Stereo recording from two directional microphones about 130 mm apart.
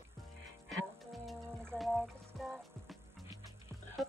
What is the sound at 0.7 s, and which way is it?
Music, centre (ahead or behind).